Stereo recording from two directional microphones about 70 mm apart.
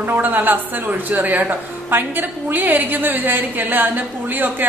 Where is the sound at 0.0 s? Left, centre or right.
Right.